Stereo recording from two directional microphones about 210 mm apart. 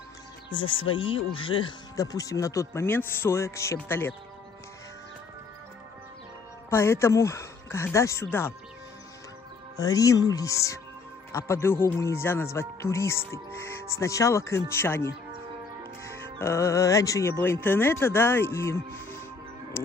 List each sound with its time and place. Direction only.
0.6 s speech: 25° left (ahead or behind)
6.7 s speech: 10° left (ahead or behind)
9.8 s speech: 15° left (ahead or behind)